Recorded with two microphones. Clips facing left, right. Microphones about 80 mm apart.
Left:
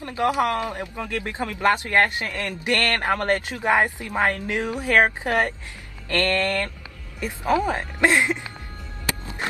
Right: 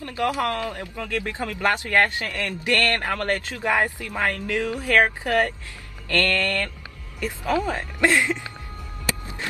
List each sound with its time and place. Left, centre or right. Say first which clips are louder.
0.0 s speech: left 2 dB; left